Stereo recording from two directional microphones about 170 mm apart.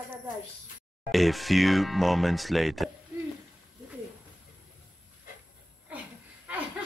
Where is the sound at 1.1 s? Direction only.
Centre (ahead or behind).